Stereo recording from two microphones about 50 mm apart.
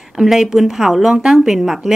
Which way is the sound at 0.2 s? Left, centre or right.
Centre.